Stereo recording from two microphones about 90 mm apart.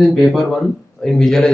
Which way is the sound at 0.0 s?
Centre (ahead or behind).